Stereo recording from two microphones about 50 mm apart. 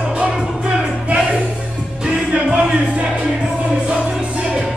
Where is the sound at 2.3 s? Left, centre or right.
Right.